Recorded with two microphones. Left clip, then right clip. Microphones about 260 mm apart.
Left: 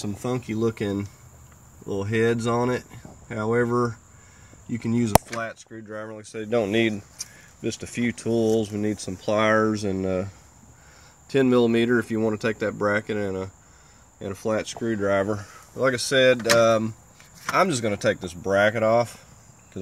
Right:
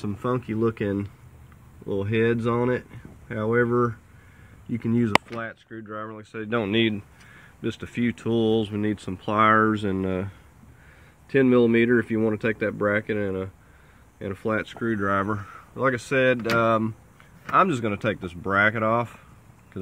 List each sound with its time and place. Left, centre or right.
0.4 s speech: centre
11.3 s speech: centre
14.2 s speech: centre
14.9 s speech: centre
15.8 s speech: centre